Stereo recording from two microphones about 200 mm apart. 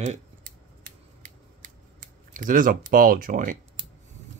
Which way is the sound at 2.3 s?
40° right (ahead or behind).